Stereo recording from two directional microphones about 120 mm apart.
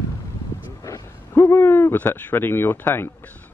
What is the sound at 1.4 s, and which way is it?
Speech, 20° left (ahead or behind).